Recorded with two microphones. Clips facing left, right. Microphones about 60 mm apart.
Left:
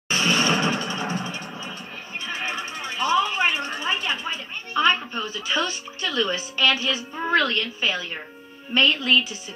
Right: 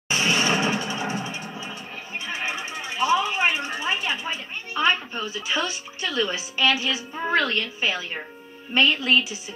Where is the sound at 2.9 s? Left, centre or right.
Right.